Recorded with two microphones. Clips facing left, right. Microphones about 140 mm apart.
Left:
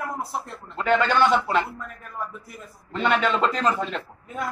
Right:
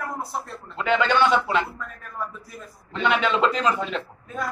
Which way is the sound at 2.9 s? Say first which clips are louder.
Even; centre (ahead or behind).